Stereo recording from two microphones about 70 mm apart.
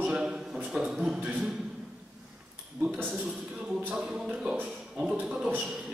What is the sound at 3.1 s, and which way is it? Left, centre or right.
A man's voice, centre.